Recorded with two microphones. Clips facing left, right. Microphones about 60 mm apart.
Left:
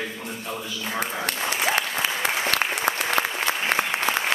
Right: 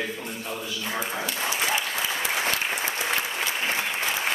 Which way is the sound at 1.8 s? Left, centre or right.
Left.